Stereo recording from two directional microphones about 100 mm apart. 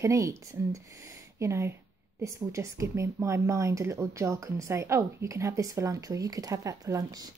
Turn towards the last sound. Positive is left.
turn(degrees=-40)  # may be behind; listen again after turning